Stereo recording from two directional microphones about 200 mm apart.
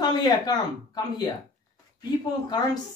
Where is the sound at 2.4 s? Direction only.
20° left (ahead or behind).